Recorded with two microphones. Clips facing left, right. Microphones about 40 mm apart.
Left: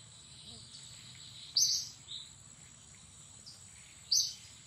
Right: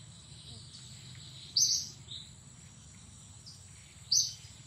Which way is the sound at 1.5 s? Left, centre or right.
Centre.